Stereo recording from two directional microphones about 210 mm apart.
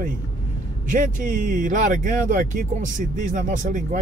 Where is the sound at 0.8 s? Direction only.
40° right (ahead or behind).